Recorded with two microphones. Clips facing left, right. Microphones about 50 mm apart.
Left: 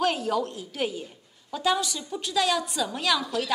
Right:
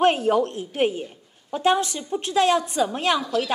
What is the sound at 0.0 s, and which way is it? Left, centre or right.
A woman's voice, right.